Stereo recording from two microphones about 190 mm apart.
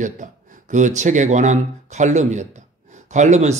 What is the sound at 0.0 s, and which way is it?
Speech, 40° right (ahead or behind).